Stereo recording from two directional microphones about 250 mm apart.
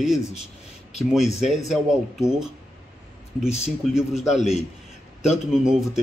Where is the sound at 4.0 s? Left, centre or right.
Centre.